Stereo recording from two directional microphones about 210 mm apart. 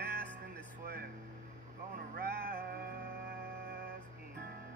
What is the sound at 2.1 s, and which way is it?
Music, 50° right (ahead or behind).